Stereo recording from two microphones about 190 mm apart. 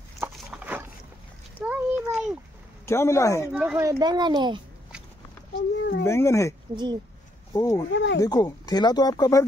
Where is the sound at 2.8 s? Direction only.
15° left (ahead or behind).